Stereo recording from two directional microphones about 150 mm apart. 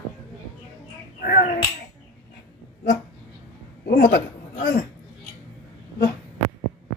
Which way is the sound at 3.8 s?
85° left.